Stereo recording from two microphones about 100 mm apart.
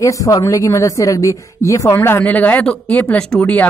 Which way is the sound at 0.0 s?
35° left (ahead or behind).